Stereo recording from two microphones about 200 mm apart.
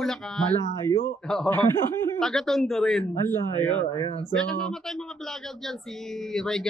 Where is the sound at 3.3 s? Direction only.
20° right (ahead or behind).